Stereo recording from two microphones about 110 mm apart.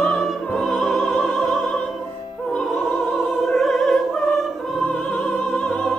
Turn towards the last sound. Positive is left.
turn(degrees=15)  # may be behind; listen again after turning